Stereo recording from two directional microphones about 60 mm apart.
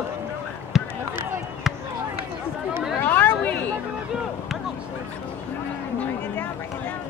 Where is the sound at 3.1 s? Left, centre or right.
Left.